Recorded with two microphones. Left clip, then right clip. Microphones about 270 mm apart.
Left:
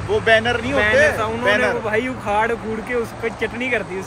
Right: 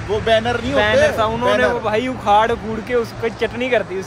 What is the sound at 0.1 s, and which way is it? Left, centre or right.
Speech, centre.